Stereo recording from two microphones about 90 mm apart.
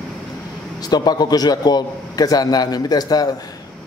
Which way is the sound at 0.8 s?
50° left (ahead or behind).